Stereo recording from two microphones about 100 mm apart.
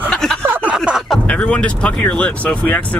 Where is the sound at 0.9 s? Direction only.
5° right (ahead or behind).